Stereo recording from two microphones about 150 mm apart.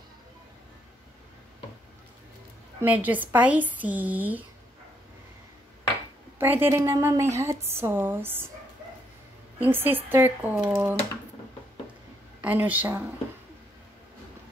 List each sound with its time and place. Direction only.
2.8 s a woman's voice: 10° right (ahead or behind)
6.3 s a woman's voice: 15° right (ahead or behind)
9.6 s a woman's voice: 15° right (ahead or behind)
12.4 s a woman's voice: 10° right (ahead or behind)